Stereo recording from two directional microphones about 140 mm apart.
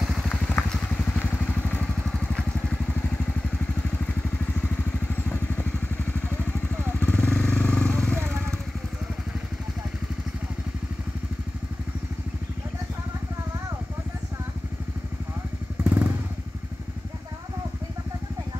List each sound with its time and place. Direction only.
0.0 s vehicle: centre (ahead or behind)
5.3 s vehicle: 15° left (ahead or behind)
7.0 s vehicle: 10° left (ahead or behind)
15.8 s motorcycle: 10° right (ahead or behind)